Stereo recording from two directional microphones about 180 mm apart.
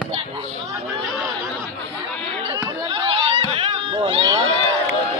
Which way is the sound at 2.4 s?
30° right (ahead or behind).